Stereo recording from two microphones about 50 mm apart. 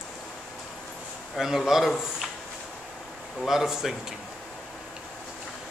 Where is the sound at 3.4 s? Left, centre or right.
Centre.